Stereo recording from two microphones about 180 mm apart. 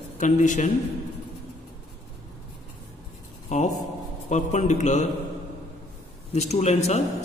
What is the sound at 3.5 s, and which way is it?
A man's voice, 40° left (ahead or behind).